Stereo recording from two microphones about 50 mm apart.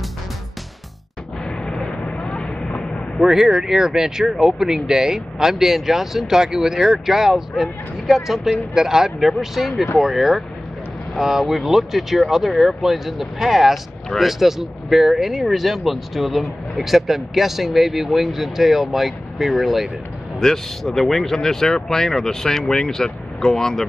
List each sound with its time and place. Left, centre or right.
1.4 s vehicle: centre
3.2 s speech: centre
20.3 s speech: centre